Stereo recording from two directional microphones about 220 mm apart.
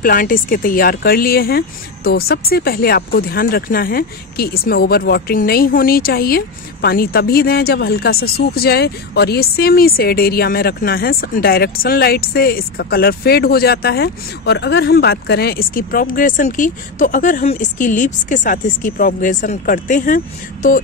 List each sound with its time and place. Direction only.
0.0 s speech: 40° left (ahead or behind)